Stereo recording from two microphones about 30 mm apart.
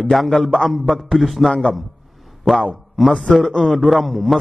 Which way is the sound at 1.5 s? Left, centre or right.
Left.